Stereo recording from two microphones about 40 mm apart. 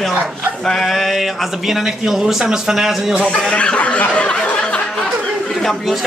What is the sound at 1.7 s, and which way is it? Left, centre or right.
A man's voice, centre.